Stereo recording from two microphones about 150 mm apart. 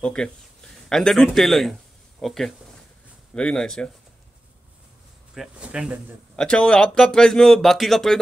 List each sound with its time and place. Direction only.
0.0 s speech: 5° left (ahead or behind)
5.3 s speech: 5° right (ahead or behind)
6.3 s speech: 5° left (ahead or behind)